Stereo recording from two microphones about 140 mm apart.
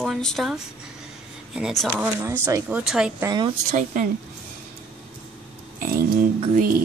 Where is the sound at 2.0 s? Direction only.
15° right (ahead or behind).